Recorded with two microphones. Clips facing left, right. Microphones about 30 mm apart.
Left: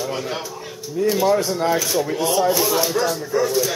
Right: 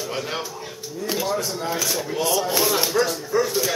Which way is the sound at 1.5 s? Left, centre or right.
Centre.